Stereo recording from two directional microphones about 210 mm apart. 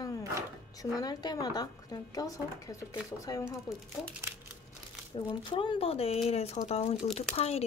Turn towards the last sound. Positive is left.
turn(degrees=30)  # may be behind; listen again after turning